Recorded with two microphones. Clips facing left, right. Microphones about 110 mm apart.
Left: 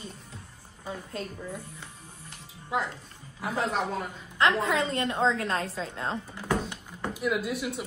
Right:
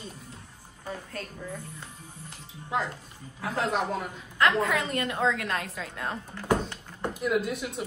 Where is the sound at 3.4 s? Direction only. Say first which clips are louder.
Right 1 dB; 5° left (ahead or behind).